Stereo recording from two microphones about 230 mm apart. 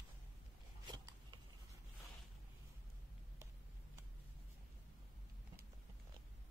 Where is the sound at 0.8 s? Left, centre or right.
Centre.